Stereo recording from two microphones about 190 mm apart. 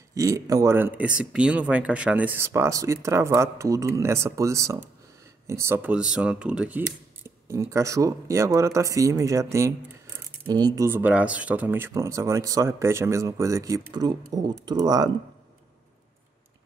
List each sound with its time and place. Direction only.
0.1 s speech: 15° right (ahead or behind)